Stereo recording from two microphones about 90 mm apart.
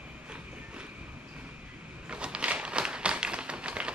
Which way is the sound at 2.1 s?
10° right (ahead or behind).